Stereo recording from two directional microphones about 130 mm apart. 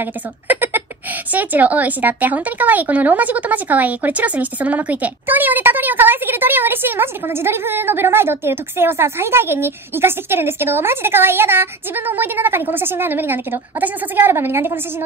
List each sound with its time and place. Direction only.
0.0 s a woman's voice: 15° right (ahead or behind)